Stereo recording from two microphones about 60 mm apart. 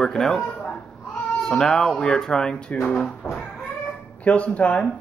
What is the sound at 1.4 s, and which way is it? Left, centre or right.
Speech, centre.